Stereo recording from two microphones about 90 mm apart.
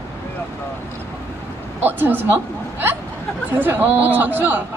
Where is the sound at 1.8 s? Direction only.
20° right (ahead or behind).